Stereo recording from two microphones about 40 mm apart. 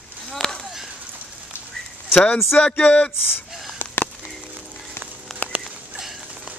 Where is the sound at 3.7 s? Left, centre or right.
Left.